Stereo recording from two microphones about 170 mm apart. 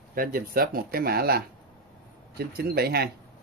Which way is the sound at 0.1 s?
60° right (ahead or behind).